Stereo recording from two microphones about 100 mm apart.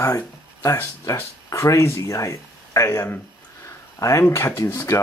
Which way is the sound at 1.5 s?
30° left (ahead or behind).